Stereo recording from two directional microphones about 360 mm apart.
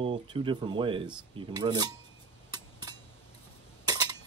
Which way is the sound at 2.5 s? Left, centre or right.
Centre.